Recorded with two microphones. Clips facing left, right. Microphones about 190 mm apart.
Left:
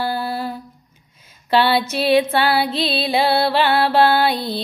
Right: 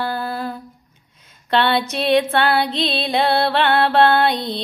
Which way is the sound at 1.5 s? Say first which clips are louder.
Left 1 dB; 5° left (ahead or behind).